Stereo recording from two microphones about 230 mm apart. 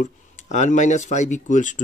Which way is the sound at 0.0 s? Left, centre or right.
Left.